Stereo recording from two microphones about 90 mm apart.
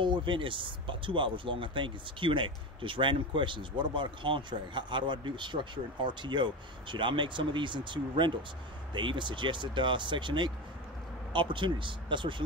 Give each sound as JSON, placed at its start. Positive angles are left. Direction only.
{"t": 0.0, "sound": "speech", "side_deg": -65}